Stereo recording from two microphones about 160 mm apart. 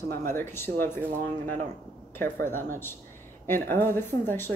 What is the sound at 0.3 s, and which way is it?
Speech, 15° left (ahead or behind).